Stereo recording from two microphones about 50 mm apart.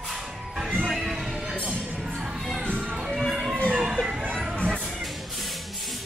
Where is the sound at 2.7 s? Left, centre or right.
Right.